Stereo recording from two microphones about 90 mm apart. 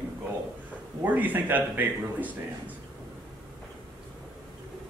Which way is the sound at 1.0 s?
20° right (ahead or behind).